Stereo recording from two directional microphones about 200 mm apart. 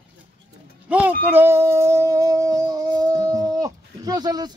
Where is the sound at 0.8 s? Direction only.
10° right (ahead or behind).